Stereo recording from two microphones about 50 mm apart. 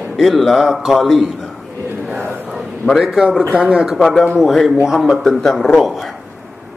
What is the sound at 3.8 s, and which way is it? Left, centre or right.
Speech, centre.